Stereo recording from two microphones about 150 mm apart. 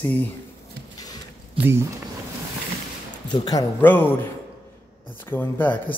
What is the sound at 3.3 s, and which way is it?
Speech, 25° left (ahead or behind).